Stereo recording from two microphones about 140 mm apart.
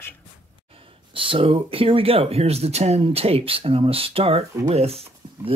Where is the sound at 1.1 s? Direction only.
40° right (ahead or behind).